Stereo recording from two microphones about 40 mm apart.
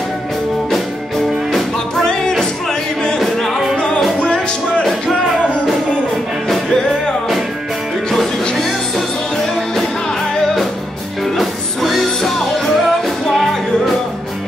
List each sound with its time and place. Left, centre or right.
3.2 s music: centre
6.7 s music: centre
8.1 s music: centre
11.3 s music: centre